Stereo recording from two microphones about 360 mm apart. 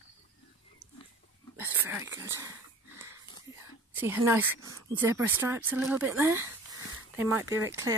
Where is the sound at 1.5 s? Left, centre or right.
Centre.